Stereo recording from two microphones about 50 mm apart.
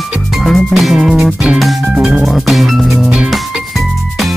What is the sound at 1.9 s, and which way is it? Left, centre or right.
Music, right.